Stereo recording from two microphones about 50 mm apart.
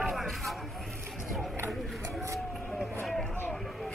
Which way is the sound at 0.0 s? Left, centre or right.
Centre.